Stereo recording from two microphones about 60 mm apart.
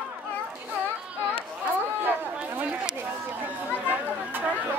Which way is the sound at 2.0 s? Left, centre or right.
Right.